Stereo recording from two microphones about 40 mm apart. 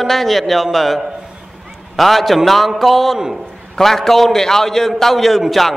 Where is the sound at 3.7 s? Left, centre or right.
Centre.